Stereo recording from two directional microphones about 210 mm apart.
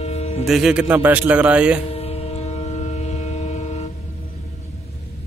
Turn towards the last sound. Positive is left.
turn(degrees=30)  # may be behind; listen again after turning